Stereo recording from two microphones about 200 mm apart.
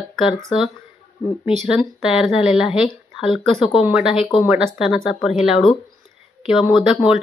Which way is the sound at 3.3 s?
25° left (ahead or behind).